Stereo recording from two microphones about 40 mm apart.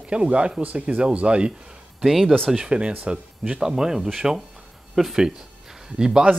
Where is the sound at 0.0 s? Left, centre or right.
Right.